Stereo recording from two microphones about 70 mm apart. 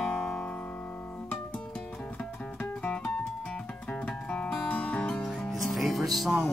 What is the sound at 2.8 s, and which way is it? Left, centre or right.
Guitar, centre.